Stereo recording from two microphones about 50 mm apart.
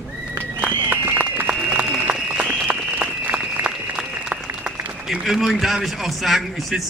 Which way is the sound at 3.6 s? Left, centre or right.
Right.